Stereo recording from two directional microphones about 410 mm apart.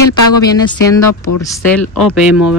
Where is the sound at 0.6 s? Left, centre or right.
Centre.